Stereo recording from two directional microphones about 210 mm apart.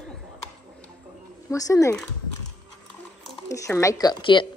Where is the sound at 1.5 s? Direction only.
15° left (ahead or behind).